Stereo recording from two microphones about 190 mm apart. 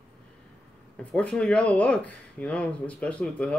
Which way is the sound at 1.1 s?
5° left (ahead or behind).